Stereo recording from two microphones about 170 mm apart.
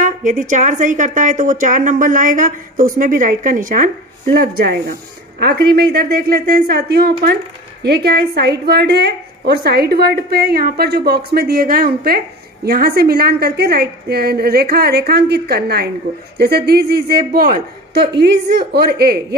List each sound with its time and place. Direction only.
0.0 s a woman's voice: 45° right (ahead or behind)
18.1 s a woman's voice: 80° right